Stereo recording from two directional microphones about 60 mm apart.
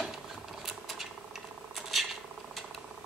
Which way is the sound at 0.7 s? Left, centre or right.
Centre.